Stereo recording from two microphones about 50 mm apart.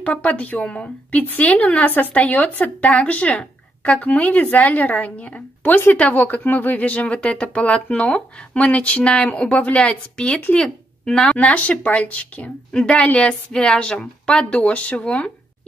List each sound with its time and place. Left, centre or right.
0.0 s a woman's voice: left
11.2 s speech: left